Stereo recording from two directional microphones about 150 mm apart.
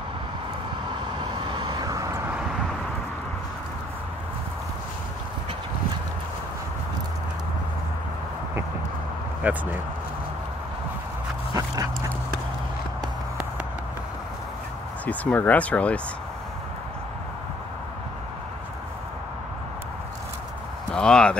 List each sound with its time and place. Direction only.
1.2 s vehicle: 30° right (ahead or behind)
9.4 s speech: 10° right (ahead or behind)
11.5 s dog: 25° right (ahead or behind)
15.0 s speech: 10° left (ahead or behind)
20.9 s clip-clop: 5° left (ahead or behind)